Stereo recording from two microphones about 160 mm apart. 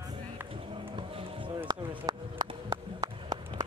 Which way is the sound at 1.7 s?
25° right (ahead or behind).